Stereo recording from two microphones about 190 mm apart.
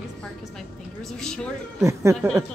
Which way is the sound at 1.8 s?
15° right (ahead or behind).